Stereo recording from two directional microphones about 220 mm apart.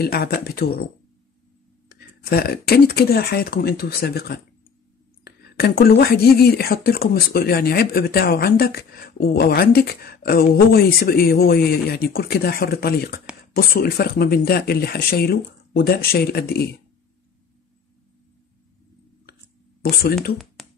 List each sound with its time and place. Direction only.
0.0 s speech: 45° left (ahead or behind)
2.2 s speech: 45° left (ahead or behind)
19.8 s speech: 45° left (ahead or behind)
20.6 s music: centre (ahead or behind)